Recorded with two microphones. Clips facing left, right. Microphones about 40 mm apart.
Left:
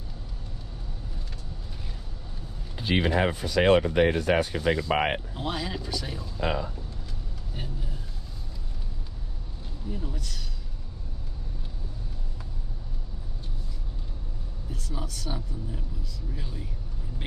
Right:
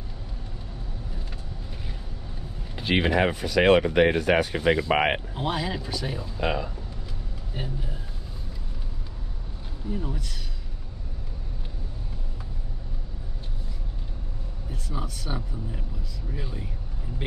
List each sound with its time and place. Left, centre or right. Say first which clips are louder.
2.8 s speech: right 2 dB; right
3.3 s speech: right 1 dB; right
5.3 s speech: right 3 dB; centre
7.5 s speech: right 5 dB; centre
9.8 s speech: right 4 dB; centre
14.7 s speech: right 2 dB; centre